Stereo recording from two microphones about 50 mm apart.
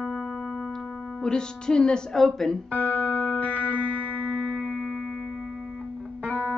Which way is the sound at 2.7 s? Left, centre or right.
Left.